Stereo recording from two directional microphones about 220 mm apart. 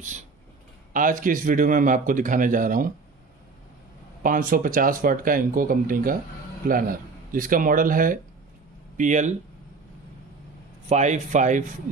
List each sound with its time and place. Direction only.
0.9 s speech: 40° right (ahead or behind)
4.2 s speech: 40° right (ahead or behind)
10.9 s speech: 30° right (ahead or behind)